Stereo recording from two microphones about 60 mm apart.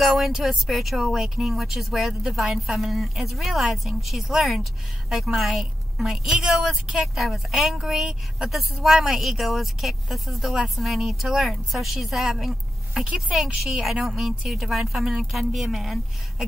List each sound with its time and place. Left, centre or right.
0.0 s a woman's voice: centre
13.0 s speech: centre
13.4 s a woman's voice: centre